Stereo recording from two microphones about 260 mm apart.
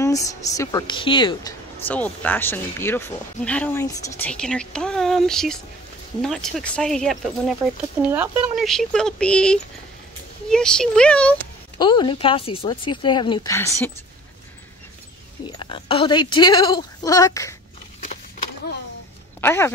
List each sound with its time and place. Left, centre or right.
0.0 s speech: centre
1.9 s speech: centre
11.8 s a woman's voice: centre
15.4 s a woman's voice: centre
19.4 s a woman's voice: centre